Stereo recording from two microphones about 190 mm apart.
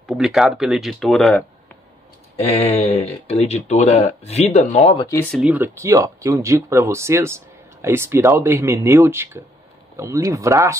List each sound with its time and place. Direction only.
0.0 s speech: centre (ahead or behind)
2.5 s speech: 30° left (ahead or behind)
5.0 s speech: 15° left (ahead or behind)
5.3 s speech: 5° right (ahead or behind)